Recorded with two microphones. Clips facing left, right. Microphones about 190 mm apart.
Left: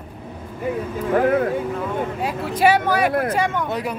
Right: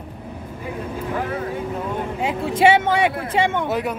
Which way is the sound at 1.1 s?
55° left (ahead or behind).